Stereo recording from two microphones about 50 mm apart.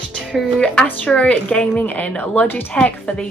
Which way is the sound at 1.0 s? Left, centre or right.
Left.